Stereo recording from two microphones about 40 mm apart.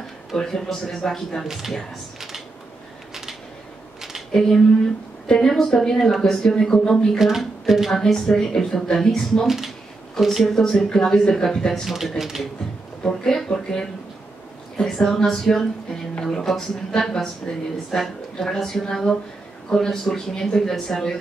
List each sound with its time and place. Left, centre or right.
0.4 s a woman's voice: centre
1.4 s speech: centre
4.4 s a woman's voice: centre
5.2 s a woman's voice: centre
6.5 s speech: left
7.2 s speech: centre
7.9 s a woman's voice: centre
10.2 s speech: centre
10.5 s a woman's voice: centre
11.8 s speech: centre
13.0 s a woman's voice: centre
17.5 s speech: left
17.9 s a woman's voice: centre